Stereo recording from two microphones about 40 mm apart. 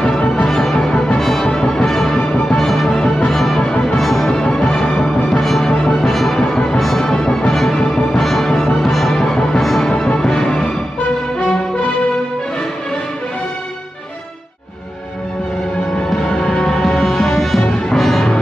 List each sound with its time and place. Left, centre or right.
0.5 s music: centre
0.7 s music: centre
10.1 s music: centre
16.3 s music: centre